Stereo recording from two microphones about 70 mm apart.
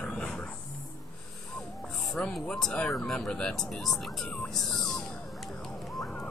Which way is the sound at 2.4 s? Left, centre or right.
Centre.